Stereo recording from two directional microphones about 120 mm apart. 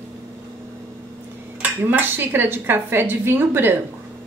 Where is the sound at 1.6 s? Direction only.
15° right (ahead or behind).